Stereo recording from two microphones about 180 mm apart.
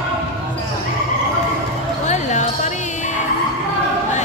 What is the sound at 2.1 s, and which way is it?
Basketball bounce, 40° left (ahead or behind).